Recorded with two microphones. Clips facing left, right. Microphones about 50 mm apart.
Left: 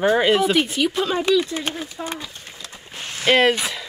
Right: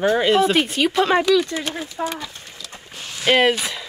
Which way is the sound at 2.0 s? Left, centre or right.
Right.